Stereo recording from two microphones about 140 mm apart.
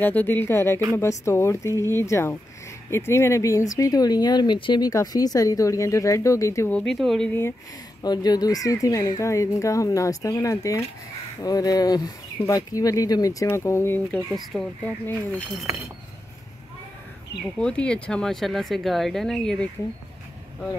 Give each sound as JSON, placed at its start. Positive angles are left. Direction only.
{"t": 0.0, "sound": "speech", "side_deg": 15}
{"t": 6.7, "sound": "speech", "side_deg": 5}
{"t": 8.0, "sound": "speech", "side_deg": 30}
{"t": 14.3, "sound": "speech", "side_deg": 0}
{"t": 17.6, "sound": "speech", "side_deg": 5}